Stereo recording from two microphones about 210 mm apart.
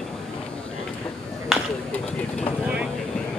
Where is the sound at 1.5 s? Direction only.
5° left (ahead or behind).